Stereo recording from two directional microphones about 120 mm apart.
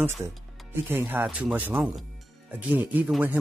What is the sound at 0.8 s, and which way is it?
Speech, 15° right (ahead or behind).